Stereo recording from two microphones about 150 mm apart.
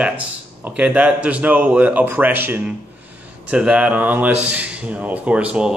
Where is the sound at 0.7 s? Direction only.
10° right (ahead or behind).